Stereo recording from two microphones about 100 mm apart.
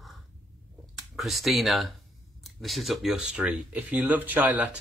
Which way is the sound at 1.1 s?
Centre (ahead or behind).